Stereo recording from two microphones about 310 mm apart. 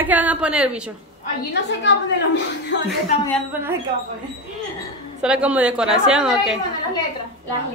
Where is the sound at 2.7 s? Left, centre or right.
Left.